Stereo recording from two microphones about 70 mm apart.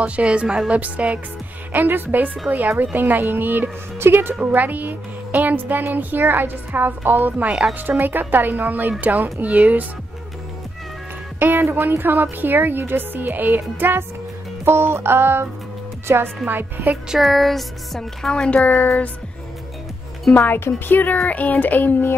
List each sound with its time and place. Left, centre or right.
0.0 s a woman's voice: centre
11.3 s speech: right
13.7 s music: right
16.4 s speech: right
17.2 s speech: centre; by 18.9 s left
20.3 s speech: left